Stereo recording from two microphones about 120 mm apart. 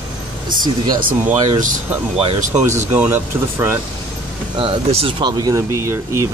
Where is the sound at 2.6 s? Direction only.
20° right (ahead or behind).